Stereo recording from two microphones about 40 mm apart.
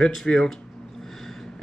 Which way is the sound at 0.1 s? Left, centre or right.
Centre.